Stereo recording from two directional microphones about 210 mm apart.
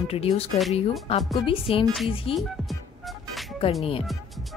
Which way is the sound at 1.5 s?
25° left (ahead or behind).